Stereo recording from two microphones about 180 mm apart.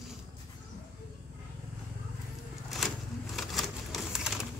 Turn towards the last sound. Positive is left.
turn(degrees=0)  # may be behind; listen again after turning